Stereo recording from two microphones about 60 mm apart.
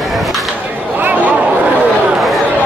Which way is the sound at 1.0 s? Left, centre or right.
Right.